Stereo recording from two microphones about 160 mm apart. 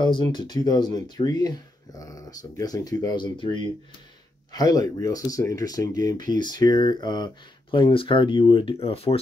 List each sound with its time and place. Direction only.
0.0 s speech: 30° left (ahead or behind)